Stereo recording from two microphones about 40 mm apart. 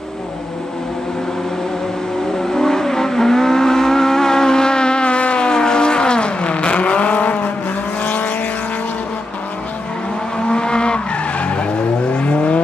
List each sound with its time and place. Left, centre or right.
2.5 s vehicle: centre; by 8.3 s left
10.4 s vehicle: left